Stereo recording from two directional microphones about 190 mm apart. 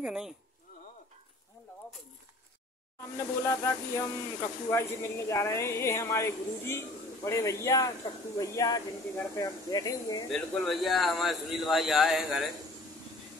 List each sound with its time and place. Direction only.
0.0 s a man's voice: 5° right (ahead or behind)
3.2 s speech: 15° left (ahead or behind)
10.3 s a man's voice: centre (ahead or behind)